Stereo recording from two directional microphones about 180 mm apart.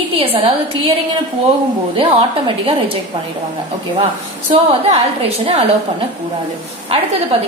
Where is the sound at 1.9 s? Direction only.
30° right (ahead or behind).